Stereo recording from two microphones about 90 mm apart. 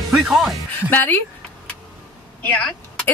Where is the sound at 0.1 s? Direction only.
5° right (ahead or behind).